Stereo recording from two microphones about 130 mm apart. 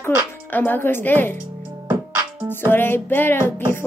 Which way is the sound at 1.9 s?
15° right (ahead or behind).